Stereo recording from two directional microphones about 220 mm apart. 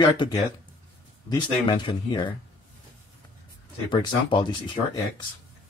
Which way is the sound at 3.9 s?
20° left (ahead or behind).